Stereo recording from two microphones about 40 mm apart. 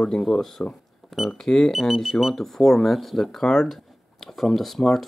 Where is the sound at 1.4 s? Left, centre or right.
Centre.